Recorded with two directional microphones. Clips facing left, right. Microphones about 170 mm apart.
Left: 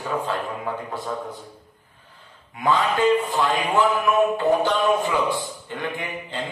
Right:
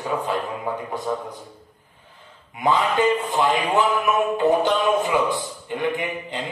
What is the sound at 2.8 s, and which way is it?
A man's voice, 20° right (ahead or behind).